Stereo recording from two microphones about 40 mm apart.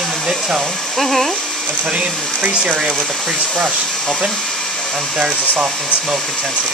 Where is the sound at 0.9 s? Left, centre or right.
Centre.